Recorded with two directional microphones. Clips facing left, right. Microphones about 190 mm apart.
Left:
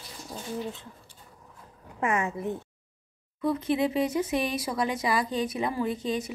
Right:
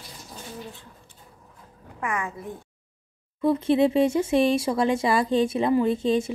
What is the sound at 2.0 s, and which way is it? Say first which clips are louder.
Speech: left 3 dB; 25° left (ahead or behind).